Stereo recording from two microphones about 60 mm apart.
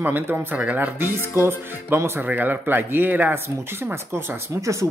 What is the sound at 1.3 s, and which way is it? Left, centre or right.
Speech, right.